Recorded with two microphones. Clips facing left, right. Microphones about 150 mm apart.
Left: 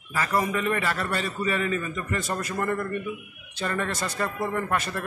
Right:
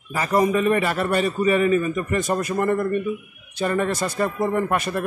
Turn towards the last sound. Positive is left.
turn(degrees=-15)  # may be behind; listen again after turning